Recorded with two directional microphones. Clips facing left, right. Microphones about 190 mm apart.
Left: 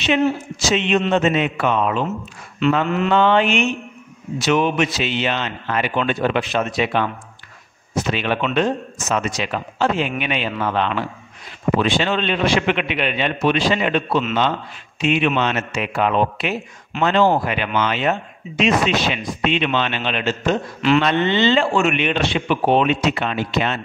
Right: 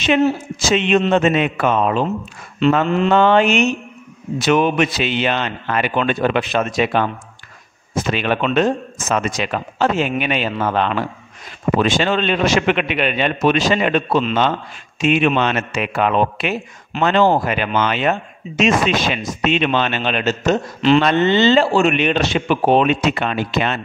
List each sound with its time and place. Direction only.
0.0 s a man's voice: 50° right (ahead or behind); by 2.8 s 30° right (ahead or behind)
3.1 s a man's voice: 45° right (ahead or behind)
9.1 s a man's voice: 50° right (ahead or behind)